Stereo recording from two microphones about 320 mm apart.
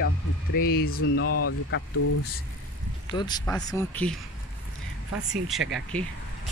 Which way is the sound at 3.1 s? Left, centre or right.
Centre.